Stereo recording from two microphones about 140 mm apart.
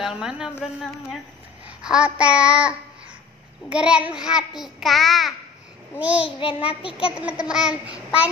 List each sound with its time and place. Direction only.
0.0 s a woman's voice: 5° right (ahead or behind)
1.8 s a child's voice: 5° right (ahead or behind)
6.2 s child singing: 40° left (ahead or behind)
7.1 s a child's voice: 5° right (ahead or behind)